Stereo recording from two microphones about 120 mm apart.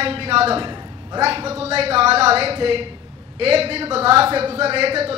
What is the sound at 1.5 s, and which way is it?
A woman's voice, 55° right (ahead or behind).